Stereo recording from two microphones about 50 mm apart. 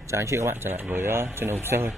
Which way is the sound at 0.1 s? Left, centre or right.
Right.